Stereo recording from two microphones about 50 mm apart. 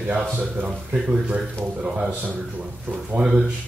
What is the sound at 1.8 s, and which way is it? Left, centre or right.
Speech, right.